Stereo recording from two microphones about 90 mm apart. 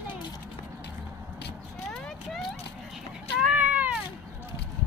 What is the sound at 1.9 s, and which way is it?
Vehicle, 10° left (ahead or behind).